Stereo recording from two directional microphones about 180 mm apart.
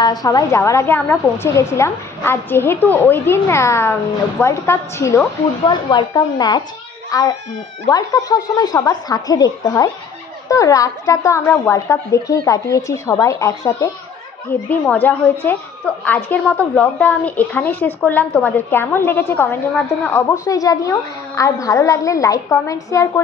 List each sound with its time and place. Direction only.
0.0 s a woman's voice: 20° left (ahead or behind)
5.7 s a child's voice: 25° left (ahead or behind)